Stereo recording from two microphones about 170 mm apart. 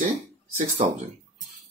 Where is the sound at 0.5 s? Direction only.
45° right (ahead or behind).